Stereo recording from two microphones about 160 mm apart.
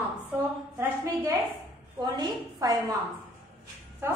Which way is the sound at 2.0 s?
25° right (ahead or behind).